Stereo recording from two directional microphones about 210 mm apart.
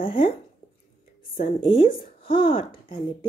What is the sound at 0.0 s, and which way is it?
Speech, 25° left (ahead or behind).